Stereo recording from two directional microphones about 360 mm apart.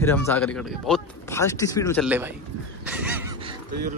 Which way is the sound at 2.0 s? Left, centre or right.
Centre.